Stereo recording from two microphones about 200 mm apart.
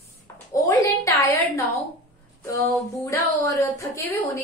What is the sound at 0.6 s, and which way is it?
A woman's voice, 15° left (ahead or behind).